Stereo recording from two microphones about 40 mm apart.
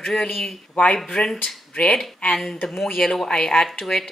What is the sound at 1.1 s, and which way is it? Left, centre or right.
Speech, centre.